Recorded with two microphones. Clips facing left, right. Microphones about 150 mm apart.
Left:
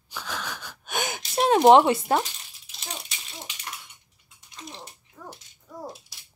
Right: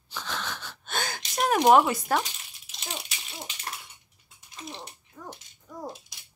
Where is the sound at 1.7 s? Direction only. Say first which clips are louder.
Left 4 dB; 25° left (ahead or behind).